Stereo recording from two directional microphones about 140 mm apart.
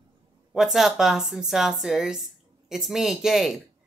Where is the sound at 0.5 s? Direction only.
Centre (ahead or behind).